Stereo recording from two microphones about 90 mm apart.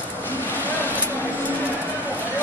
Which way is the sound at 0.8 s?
20° left (ahead or behind).